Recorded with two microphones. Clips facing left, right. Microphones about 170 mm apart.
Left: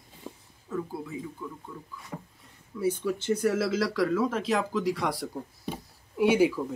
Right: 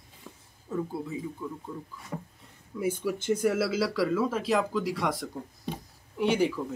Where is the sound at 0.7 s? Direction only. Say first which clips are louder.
Right 1 dB; 30° right (ahead or behind).